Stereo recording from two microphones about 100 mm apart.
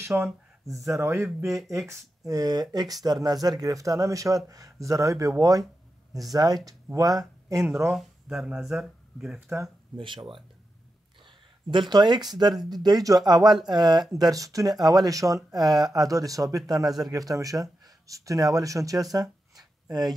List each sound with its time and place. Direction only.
0.0 s a sound: 25° right (ahead or behind)
0.9 s speech: 25° right (ahead or behind)
7.9 s speech: 5° right (ahead or behind)
9.9 s speech: 60° right (ahead or behind)
11.7 s speech: 50° right (ahead or behind)